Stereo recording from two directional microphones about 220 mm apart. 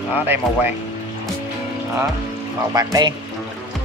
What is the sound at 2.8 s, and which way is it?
Speech, 15° right (ahead or behind).